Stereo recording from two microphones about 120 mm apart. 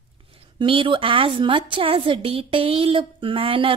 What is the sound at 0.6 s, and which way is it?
Speech, 45° right (ahead or behind).